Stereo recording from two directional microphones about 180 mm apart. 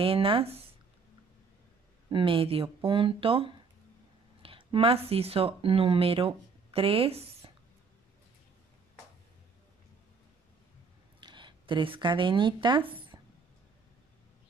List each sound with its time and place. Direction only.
0.0 s speech: 30° right (ahead or behind)
2.0 s speech: 30° right (ahead or behind)
11.1 s speech: 25° right (ahead or behind)